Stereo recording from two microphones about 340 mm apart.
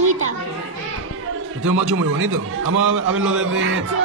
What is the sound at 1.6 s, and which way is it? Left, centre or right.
Speech, right.